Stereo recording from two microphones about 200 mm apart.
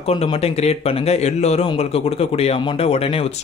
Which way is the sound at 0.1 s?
30° left (ahead or behind).